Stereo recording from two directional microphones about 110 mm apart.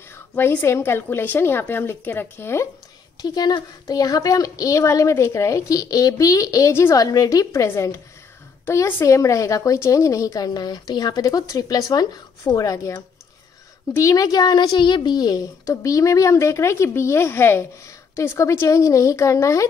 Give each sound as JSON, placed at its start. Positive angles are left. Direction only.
{"t": 0.1, "sound": "a woman's voice", "side_deg": 20}
{"t": 3.2, "sound": "a woman's voice", "side_deg": 35}
{"t": 13.9, "sound": "a woman's voice", "side_deg": 30}